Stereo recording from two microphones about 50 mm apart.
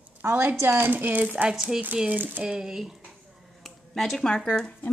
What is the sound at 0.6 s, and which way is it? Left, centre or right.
Speech, right.